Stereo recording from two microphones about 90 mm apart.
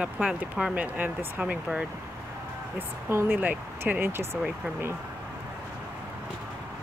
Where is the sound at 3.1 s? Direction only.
25° right (ahead or behind).